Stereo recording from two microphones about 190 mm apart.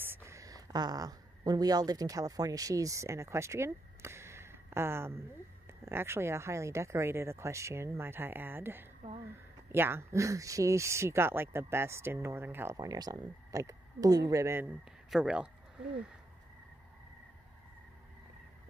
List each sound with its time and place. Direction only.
0.0 s speech: 10° right (ahead or behind)